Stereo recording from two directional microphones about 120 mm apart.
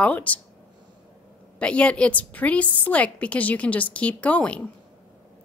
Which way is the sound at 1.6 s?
10° left (ahead or behind).